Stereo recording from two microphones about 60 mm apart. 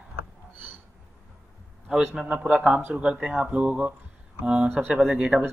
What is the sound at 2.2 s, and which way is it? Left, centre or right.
A man's voice, centre.